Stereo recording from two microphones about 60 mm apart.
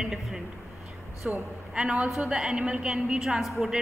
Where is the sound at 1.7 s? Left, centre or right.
Centre.